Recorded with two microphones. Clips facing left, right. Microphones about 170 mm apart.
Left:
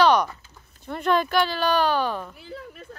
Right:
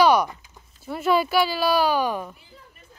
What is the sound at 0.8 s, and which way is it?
Speech, 5° right (ahead or behind).